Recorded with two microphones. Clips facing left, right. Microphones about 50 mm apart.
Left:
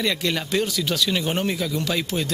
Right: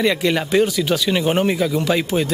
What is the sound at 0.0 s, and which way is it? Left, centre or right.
Speech, centre.